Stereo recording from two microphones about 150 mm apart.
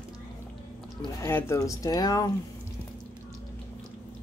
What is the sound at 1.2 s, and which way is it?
Speech, 15° left (ahead or behind).